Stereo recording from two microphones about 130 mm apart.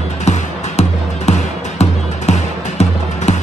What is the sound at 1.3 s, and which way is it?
Music, 60° left (ahead or behind).